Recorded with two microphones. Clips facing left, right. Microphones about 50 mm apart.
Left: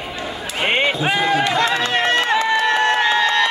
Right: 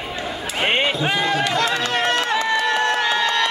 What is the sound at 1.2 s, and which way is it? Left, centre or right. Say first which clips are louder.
Run: left 4 dB; left.